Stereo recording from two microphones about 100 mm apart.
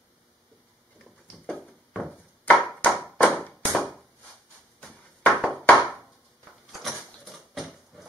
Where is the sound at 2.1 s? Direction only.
20° left (ahead or behind).